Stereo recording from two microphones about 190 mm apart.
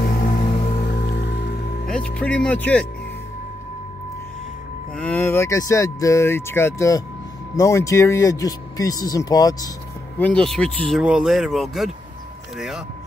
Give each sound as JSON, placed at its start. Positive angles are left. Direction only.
{"t": 0.0, "sound": "music", "side_deg": 50}
{"t": 1.9, "sound": "speech", "side_deg": 5}
{"t": 4.9, "sound": "speech", "side_deg": 5}
{"t": 10.1, "sound": "speech", "side_deg": 5}